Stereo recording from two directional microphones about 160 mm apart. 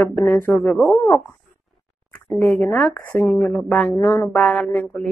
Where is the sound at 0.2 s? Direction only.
15° left (ahead or behind).